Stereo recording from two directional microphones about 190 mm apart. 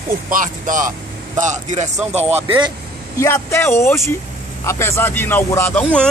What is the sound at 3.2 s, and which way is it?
Speech, 15° left (ahead or behind).